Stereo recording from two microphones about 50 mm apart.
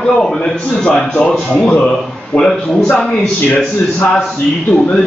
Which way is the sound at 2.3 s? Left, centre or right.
Centre.